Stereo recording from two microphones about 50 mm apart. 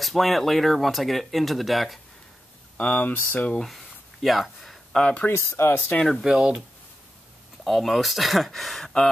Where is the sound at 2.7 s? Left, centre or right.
Left.